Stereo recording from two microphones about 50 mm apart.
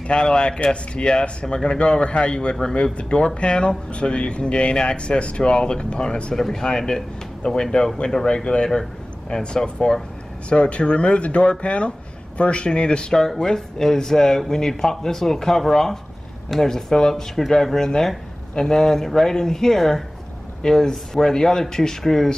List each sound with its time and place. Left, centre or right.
0.1 s speech: centre